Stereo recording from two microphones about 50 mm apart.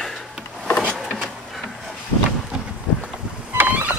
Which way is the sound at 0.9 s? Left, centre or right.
Centre.